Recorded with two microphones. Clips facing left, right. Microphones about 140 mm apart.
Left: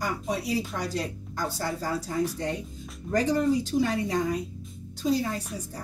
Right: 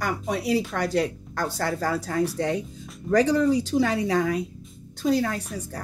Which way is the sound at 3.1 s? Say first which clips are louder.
Right 4 dB; 90° right.